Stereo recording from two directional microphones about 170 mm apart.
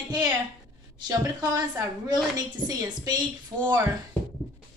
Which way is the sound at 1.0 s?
20° right (ahead or behind).